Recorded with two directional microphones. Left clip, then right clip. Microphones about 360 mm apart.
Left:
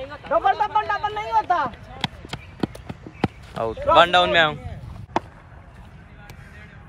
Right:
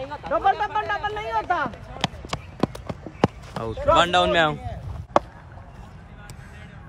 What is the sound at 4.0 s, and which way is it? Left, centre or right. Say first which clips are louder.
Speech: left 4 dB; centre.